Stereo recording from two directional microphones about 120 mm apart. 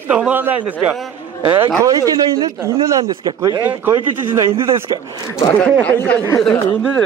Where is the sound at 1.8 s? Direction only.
30° right (ahead or behind).